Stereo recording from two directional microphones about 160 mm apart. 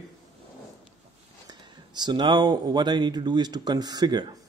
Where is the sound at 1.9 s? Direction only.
25° right (ahead or behind).